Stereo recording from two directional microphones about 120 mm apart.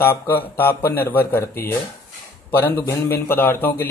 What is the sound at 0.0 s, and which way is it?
Speech, 20° left (ahead or behind).